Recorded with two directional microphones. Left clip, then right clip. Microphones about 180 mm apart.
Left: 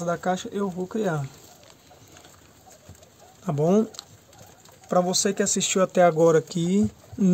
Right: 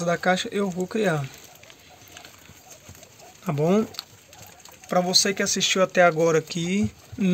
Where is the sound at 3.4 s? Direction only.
10° left (ahead or behind).